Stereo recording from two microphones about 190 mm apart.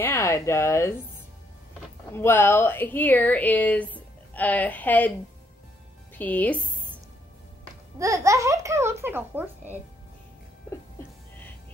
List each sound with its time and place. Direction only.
0.0 s a woman's voice: 15° left (ahead or behind)
2.1 s a woman's voice: 10° left (ahead or behind)
6.1 s a woman's voice: 10° left (ahead or behind)
8.0 s speech: 15° right (ahead or behind)
10.7 s music: 5° left (ahead or behind)